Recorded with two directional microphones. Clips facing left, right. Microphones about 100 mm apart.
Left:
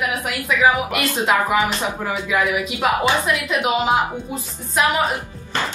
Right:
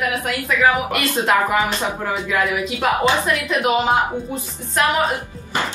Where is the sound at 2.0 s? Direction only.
5° left (ahead or behind).